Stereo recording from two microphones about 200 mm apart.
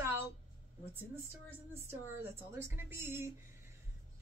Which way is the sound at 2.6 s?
10° right (ahead or behind).